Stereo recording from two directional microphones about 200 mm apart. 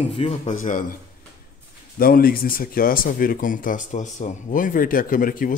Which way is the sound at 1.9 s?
45° left (ahead or behind).